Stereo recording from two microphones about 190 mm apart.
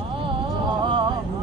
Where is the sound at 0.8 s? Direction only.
25° right (ahead or behind).